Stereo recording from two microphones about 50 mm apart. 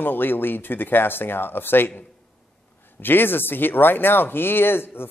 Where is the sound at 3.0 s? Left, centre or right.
Left.